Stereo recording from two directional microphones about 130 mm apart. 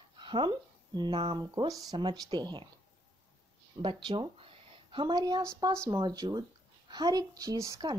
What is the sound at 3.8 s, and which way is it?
Speech, 40° right (ahead or behind).